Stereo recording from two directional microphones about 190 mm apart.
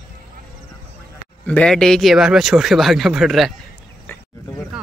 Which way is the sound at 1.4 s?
5° left (ahead or behind).